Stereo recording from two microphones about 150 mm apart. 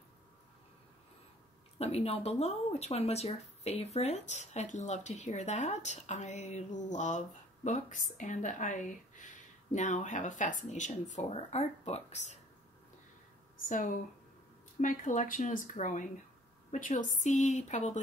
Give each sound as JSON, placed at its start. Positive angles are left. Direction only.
{"t": 1.8, "sound": "speech", "side_deg": 45}
{"t": 13.7, "sound": "speech", "side_deg": 60}